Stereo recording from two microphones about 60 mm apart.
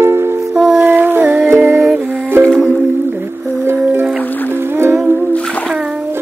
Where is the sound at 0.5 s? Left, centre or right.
Centre.